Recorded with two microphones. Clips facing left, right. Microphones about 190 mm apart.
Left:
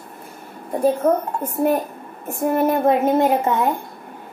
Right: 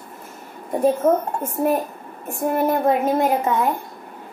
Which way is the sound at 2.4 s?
10° left (ahead or behind).